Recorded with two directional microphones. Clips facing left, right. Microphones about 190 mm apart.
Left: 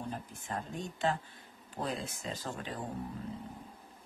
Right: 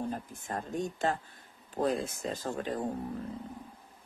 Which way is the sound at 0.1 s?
45° right (ahead or behind).